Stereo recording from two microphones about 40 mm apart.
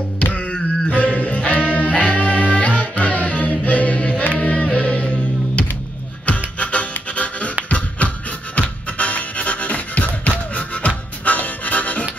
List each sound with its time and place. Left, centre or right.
0.2 s a sound: left
1.0 s music: left
6.2 s music: left
8.5 s music: left